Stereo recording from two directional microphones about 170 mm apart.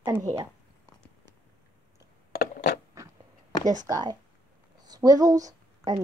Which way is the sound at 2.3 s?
65° left (ahead or behind).